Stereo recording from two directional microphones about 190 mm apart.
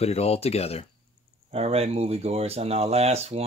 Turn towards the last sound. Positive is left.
turn(degrees=-35)  # may be behind; listen again after turning